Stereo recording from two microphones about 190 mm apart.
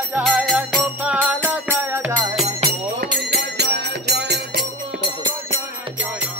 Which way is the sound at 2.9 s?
60° right (ahead or behind).